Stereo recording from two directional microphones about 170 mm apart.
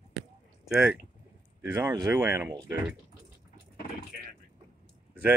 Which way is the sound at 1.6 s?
15° right (ahead or behind).